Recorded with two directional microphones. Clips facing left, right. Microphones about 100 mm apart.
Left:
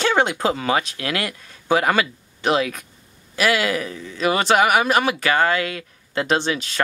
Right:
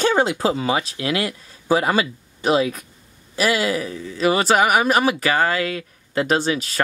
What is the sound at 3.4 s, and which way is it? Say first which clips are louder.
Speech: even; 35° right (ahead or behind).